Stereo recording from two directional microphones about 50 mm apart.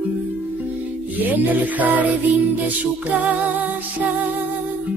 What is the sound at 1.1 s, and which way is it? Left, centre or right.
Music, right.